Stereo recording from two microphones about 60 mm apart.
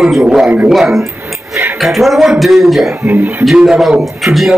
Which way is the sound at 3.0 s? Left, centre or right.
Right.